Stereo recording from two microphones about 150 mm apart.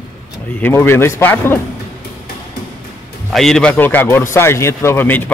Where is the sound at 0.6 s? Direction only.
15° left (ahead or behind).